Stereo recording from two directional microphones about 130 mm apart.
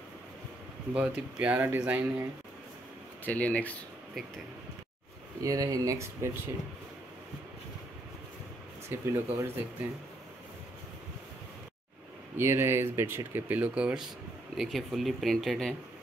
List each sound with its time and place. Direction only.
0.9 s speech: 10° right (ahead or behind)
3.3 s speech: 10° left (ahead or behind)
5.4 s speech: 25° right (ahead or behind)
8.8 s speech: 20° right (ahead or behind)
12.4 s speech: 20° right (ahead or behind); by 15.7 s centre (ahead or behind)